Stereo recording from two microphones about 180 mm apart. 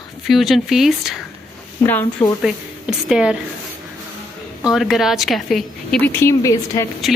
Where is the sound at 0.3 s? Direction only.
Centre (ahead or behind).